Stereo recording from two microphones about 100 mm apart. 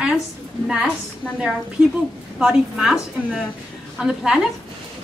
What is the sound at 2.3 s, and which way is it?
A woman's voice, 5° right (ahead or behind).